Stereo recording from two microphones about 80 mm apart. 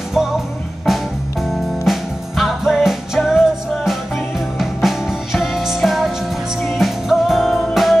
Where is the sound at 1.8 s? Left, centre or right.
Centre.